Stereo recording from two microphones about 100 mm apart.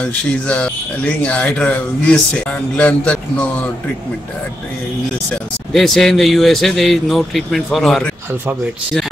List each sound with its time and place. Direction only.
0.0 s speech: 15° left (ahead or behind)
5.3 s speech: 5° left (ahead or behind)